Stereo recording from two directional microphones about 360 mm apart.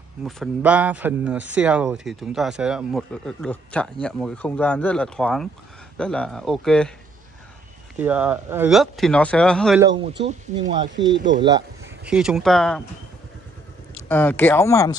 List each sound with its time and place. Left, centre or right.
0.2 s speech: centre
7.9 s speech: centre
9.8 s speech: centre
11.0 s speech: right
11.4 s speech: centre
14.0 s speech: centre